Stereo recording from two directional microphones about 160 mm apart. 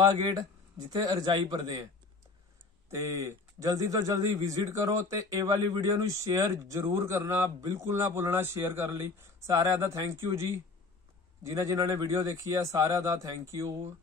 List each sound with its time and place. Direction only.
0.0 s speech: 25° right (ahead or behind)
2.9 s speech: 20° right (ahead or behind)